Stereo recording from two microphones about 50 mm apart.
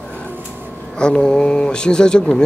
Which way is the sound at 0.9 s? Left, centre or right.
Centre.